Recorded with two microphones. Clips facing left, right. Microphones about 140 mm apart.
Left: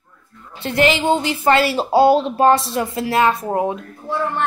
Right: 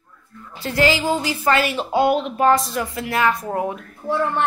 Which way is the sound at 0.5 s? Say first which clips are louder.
Left 2 dB; 25° left (ahead or behind).